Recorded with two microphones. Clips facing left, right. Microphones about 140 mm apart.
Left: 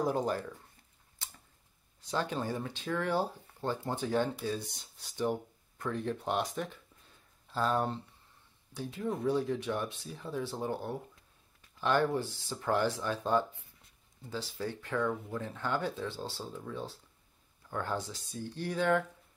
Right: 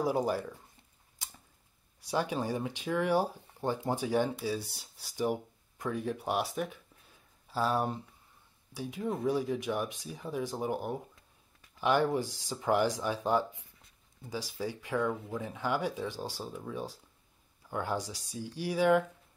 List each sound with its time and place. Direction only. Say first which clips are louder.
0.0 s speech: right 1 dB; 10° right (ahead or behind)
2.0 s speech: right 2 dB; 10° right (ahead or behind)